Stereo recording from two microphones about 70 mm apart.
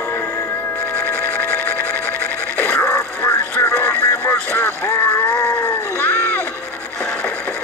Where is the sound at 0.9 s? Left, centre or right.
Left.